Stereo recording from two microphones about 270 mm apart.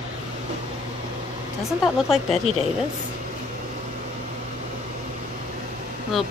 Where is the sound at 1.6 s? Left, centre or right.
Centre.